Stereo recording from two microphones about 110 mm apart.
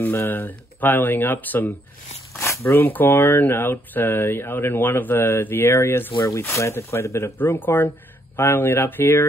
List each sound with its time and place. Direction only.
0.0 s speech: 20° left (ahead or behind)